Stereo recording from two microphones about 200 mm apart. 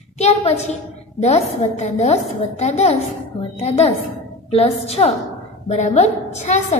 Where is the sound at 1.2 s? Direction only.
30° left (ahead or behind).